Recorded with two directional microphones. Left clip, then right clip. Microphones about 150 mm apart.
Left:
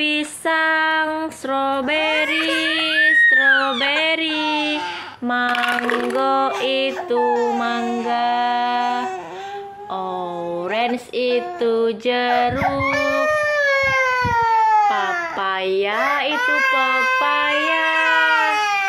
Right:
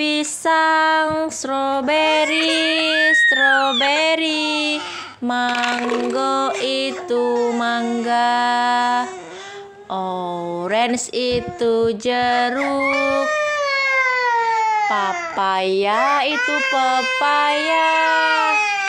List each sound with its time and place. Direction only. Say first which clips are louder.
0.0 s a sound: right 1 dB; 30° right (ahead or behind)
5.5 s music: left 2 dB; centre (ahead or behind)
6.1 s a sound: left 2 dB; 25° right (ahead or behind)
7.2 s music: even; centre (ahead or behind)
7.5 s music: right 1 dB; 35° right (ahead or behind)
10.7 s music: right 4 dB; 45° right (ahead or behind)
12.8 s cat: right 1 dB; centre (ahead or behind)
14.9 s a child's voice: even; 35° right (ahead or behind); by 18.9 s 15° right (ahead or behind)